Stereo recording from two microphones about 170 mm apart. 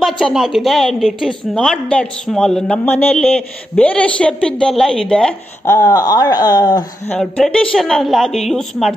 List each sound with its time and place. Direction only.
0.0 s a woman's voice: centre (ahead or behind)
5.7 s speech: 20° left (ahead or behind)
7.1 s a woman's voice: 5° left (ahead or behind)